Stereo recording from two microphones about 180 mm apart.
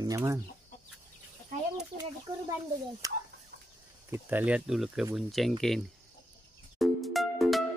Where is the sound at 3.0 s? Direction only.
20° right (ahead or behind); by 5.5 s centre (ahead or behind).